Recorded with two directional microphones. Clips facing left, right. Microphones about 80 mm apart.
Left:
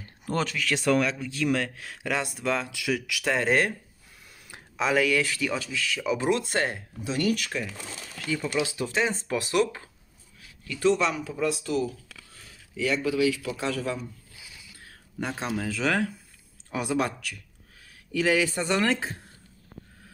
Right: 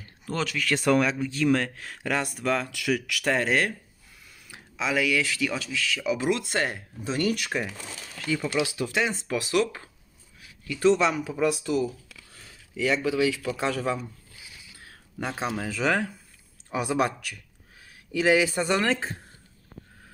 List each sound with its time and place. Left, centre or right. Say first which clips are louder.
0.3 s speech: left 1 dB; left
0.6 s speech: right 3 dB; centre
3.4 s speech: left 1 dB; left
4.5 s speech: left 3 dB; left
7.1 s speech: even; centre
8.3 s speech: right 2 dB; centre
8.6 s speech: even; left
9.1 s speech: right 1 dB; left
10.8 s speech: right 2 dB; centre
13.2 s speech: right 1 dB; right
15.1 s speech: even; centre